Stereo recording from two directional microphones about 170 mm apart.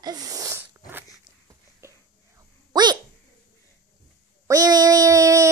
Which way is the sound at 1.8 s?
15° right (ahead or behind).